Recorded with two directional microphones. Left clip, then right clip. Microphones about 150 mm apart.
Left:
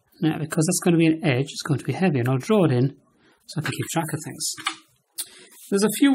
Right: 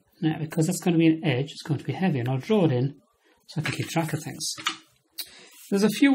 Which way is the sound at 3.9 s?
20° left (ahead or behind).